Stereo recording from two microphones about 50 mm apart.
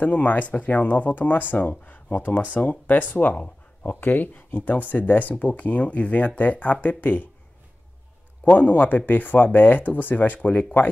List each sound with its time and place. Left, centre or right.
0.0 s speech: left
3.9 s speech: left
8.5 s speech: left